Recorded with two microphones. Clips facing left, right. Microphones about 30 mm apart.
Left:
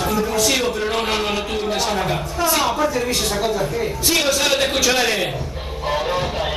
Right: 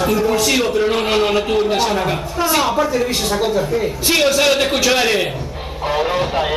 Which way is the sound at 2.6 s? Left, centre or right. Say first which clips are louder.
Right 3 dB; centre.